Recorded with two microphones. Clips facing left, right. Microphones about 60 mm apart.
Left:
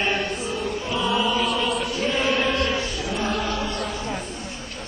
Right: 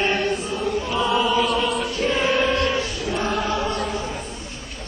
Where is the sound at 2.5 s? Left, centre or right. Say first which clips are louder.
Right 2 dB; right.